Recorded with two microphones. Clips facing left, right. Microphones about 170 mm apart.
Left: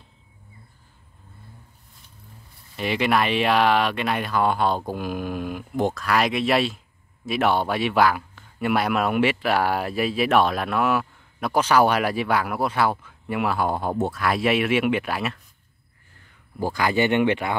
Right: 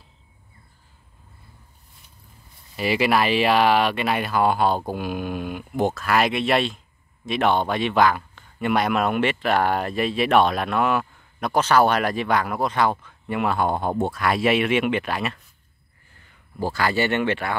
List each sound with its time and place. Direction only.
2.7 s speech: 5° right (ahead or behind)
16.5 s speech: 15° left (ahead or behind)